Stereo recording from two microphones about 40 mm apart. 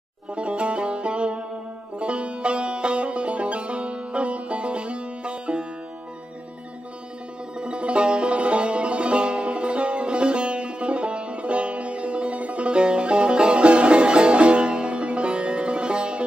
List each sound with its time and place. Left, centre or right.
0.3 s music: right
7.5 s music: right